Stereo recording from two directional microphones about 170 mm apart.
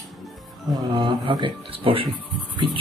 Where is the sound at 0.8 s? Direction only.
30° right (ahead or behind).